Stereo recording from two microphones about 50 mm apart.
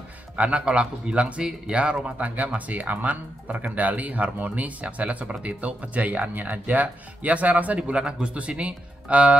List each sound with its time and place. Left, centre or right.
0.4 s speech: right